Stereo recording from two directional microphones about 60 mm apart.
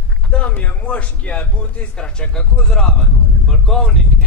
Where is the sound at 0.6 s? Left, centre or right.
Left.